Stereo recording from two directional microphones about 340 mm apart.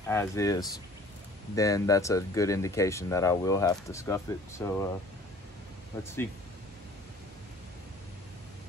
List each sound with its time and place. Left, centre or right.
0.1 s speech: centre
5.9 s speech: centre